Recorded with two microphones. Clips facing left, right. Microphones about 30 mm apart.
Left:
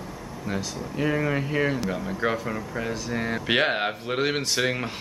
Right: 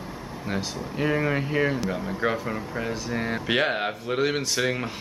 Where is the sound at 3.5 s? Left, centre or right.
Centre.